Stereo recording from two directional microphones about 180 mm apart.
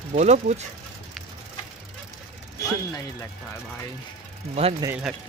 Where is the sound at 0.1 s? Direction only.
40° right (ahead or behind).